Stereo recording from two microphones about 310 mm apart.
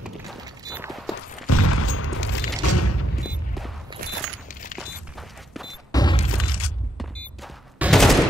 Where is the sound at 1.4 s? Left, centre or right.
Left.